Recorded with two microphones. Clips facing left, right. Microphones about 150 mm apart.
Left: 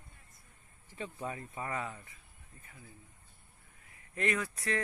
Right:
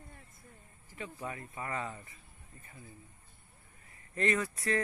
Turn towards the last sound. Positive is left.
turn(degrees=0)  # may be behind; listen again after turning